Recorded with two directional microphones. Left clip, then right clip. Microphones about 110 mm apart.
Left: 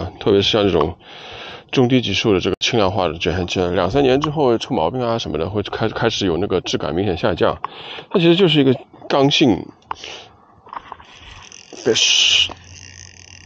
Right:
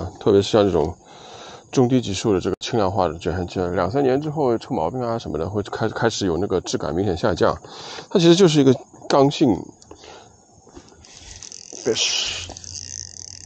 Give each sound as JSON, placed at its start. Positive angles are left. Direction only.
{"t": 0.0, "sound": "speech", "side_deg": 5}
{"t": 5.2, "sound": "speech", "side_deg": 10}
{"t": 11.7, "sound": "speech", "side_deg": 20}